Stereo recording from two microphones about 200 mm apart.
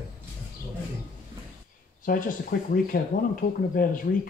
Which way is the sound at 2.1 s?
45° left (ahead or behind).